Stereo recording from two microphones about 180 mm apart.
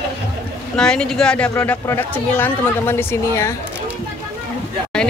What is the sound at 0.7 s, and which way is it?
A woman's voice, 5° left (ahead or behind).